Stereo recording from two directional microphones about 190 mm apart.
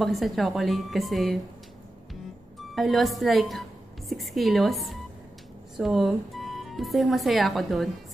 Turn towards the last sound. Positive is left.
turn(degrees=0)  # may be behind; listen again after turning